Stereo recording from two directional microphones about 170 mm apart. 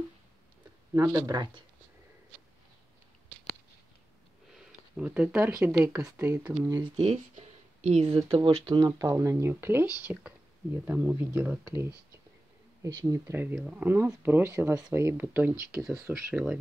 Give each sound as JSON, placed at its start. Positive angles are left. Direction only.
{"t": 0.9, "sound": "speech", "side_deg": -15}
{"t": 1.3, "sound": "speech", "side_deg": -25}
{"t": 4.6, "sound": "speech", "side_deg": -5}
{"t": 5.9, "sound": "speech", "side_deg": -15}
{"t": 6.8, "sound": "speech", "side_deg": -35}
{"t": 16.1, "sound": "speech", "side_deg": -5}